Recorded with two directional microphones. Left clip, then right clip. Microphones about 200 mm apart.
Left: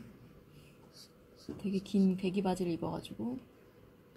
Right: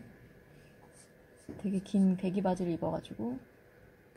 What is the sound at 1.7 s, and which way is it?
A woman's voice, 40° right (ahead or behind).